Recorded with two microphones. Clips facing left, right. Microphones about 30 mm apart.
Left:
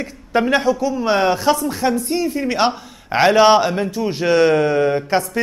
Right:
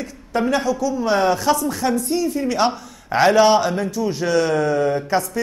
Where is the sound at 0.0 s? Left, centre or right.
Left.